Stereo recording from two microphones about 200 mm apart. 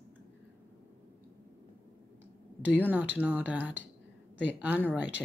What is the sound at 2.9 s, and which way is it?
Speech, 10° right (ahead or behind).